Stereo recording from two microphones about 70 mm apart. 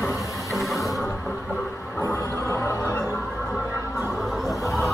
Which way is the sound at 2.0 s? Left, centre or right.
Left.